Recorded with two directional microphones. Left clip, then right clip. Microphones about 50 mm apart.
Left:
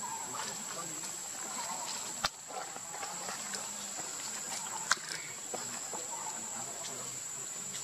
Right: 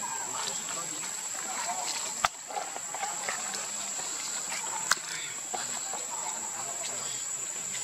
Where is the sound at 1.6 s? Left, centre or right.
Right.